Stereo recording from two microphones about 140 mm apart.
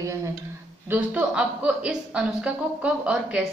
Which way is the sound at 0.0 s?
20° right (ahead or behind).